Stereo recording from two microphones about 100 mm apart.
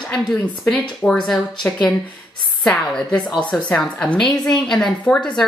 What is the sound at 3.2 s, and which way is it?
Speech, 45° left (ahead or behind).